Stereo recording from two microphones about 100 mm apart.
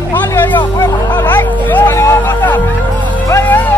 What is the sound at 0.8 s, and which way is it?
Hubbub, 25° left (ahead or behind).